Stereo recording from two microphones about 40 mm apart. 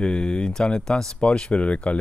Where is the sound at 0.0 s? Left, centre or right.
Left.